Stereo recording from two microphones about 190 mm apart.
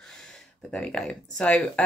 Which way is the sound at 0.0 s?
5° left (ahead or behind).